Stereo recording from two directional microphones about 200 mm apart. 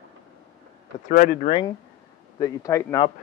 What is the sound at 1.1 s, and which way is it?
Speech, 40° left (ahead or behind).